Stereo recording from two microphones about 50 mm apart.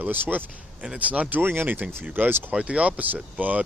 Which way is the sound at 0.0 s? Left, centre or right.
Right.